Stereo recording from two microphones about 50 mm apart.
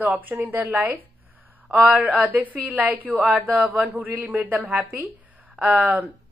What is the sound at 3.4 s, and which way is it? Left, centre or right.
A woman's voice, right.